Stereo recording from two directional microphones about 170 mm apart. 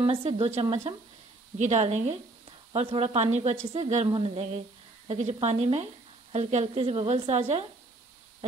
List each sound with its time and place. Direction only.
0.0 s a woman's voice: 35° right (ahead or behind)